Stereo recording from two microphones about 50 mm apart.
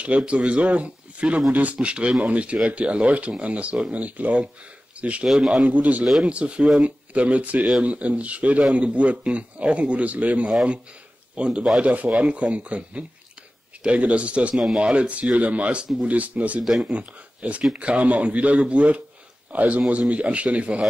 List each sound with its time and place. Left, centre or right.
0.3 s a man's voice: right
5.3 s a man's voice: centre
5.7 s a man's voice: right